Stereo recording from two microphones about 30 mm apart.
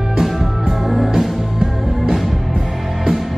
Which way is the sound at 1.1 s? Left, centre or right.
Centre.